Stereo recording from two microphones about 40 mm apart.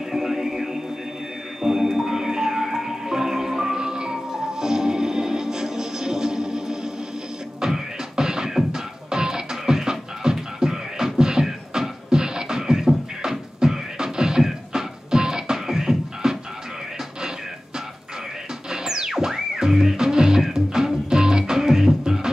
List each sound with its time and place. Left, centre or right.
0.1 s music: centre
3.7 s music: centre
18.7 s music: centre